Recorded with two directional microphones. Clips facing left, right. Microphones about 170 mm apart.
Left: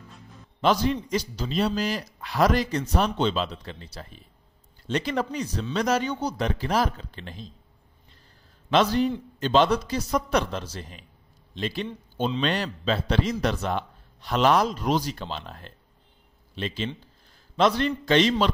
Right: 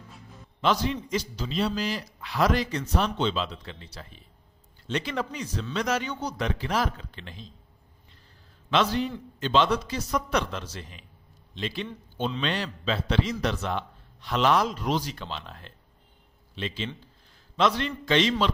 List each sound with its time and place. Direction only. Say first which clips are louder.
0.6 s a man's voice: left 3 dB; 40° left (ahead or behind)
8.6 s a man's voice: left 4 dB; 40° left (ahead or behind)